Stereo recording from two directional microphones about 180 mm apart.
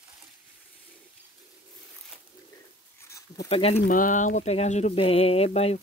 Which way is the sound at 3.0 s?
15° left (ahead or behind).